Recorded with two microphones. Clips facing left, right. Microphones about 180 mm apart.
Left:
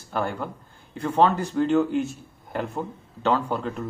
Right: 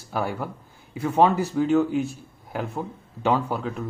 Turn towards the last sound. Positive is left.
turn(degrees=-5)  # may be behind; listen again after turning